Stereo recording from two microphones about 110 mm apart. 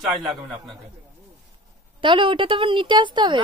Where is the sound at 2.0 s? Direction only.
50° right (ahead or behind).